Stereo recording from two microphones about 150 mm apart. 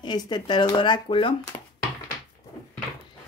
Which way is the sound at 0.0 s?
30° left (ahead or behind).